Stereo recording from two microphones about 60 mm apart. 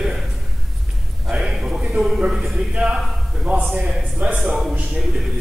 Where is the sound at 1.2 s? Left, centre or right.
Centre.